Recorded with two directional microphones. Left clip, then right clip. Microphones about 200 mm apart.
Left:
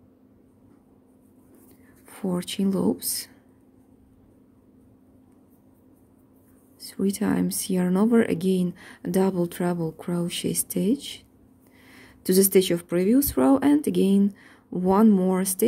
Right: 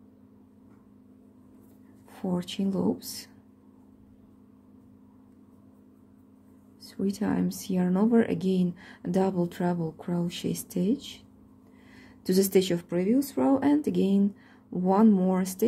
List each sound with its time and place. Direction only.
2.0 s speech: 15° left (ahead or behind)
6.8 s speech: 15° left (ahead or behind)